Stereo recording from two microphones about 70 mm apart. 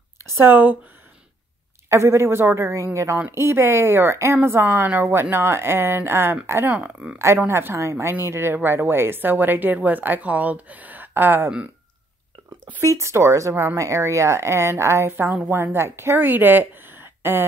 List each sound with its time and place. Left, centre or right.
0.4 s a woman's voice: right
1.9 s speech: right
6.7 s a woman's voice: right
7.4 s a woman's voice: right
12.8 s a woman's voice: right